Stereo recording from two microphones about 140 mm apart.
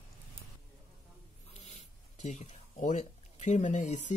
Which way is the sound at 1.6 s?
55° left (ahead or behind).